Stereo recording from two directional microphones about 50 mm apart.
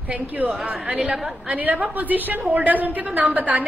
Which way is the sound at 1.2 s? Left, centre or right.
Centre.